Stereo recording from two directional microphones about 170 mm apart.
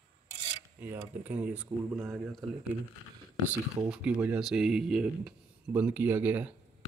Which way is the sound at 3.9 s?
10° right (ahead or behind).